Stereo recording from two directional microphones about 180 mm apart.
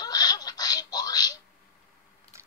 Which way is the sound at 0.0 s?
20° left (ahead or behind).